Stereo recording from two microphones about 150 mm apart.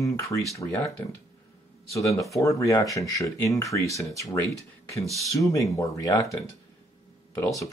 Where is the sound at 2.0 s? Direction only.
20° left (ahead or behind).